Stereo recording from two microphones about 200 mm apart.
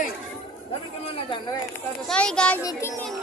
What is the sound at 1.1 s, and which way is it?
Speech, 25° left (ahead or behind).